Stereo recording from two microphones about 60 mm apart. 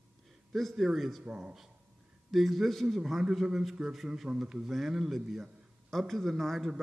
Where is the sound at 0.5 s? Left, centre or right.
Centre.